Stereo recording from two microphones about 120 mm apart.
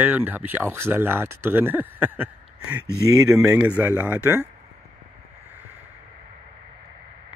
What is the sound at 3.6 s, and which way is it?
Speech, 15° right (ahead or behind).